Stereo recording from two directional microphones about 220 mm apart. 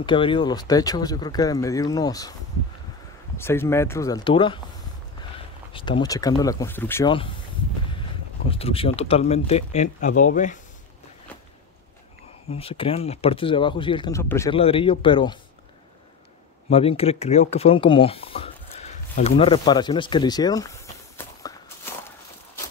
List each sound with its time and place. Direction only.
0.0 s speech: 20° left (ahead or behind)
3.3 s speech: 10° left (ahead or behind)
5.7 s speech: 20° left (ahead or behind)
8.5 s speech: 25° left (ahead or behind)
12.4 s speech: 25° left (ahead or behind)
14.5 s speech: 25° left (ahead or behind)
16.7 s speech: 25° left (ahead or behind)